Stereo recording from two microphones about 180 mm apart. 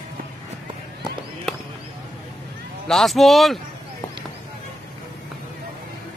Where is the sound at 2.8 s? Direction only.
Centre (ahead or behind).